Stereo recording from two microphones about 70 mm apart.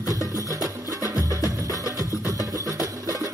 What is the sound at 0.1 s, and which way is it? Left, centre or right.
Music, right.